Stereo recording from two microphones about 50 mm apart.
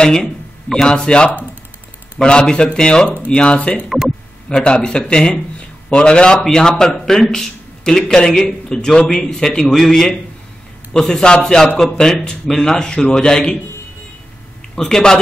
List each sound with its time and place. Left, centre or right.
0.0 s speech: centre
2.2 s speech: centre
2.5 s speech: centre
14.8 s speech: centre